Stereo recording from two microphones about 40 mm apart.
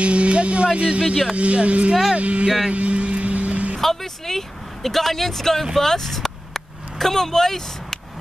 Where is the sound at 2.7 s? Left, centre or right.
Right.